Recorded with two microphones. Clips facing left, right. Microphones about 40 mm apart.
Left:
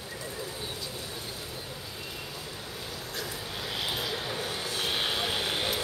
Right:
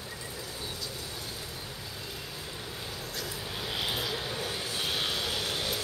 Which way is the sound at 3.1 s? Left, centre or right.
Centre.